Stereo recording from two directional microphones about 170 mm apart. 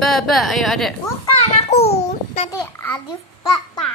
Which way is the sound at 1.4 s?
40° left (ahead or behind).